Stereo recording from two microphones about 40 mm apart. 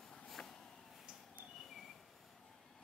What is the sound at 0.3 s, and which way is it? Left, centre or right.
Vehicle, centre.